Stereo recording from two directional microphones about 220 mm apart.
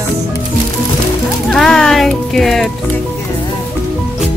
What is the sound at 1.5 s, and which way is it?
Music, centre (ahead or behind).